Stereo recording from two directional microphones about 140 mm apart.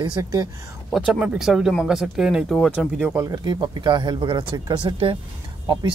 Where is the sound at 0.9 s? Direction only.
5° right (ahead or behind).